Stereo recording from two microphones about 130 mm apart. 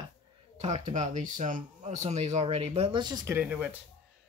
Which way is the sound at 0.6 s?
60° right (ahead or behind).